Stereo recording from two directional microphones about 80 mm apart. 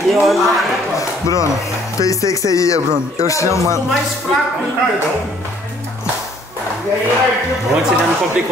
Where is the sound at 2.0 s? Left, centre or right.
Left.